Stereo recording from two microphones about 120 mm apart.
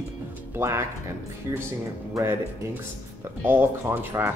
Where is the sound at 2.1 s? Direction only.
20° right (ahead or behind).